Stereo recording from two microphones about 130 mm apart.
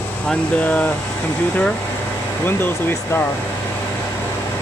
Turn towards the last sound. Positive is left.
turn(degrees=15)  # may be behind; listen again after turning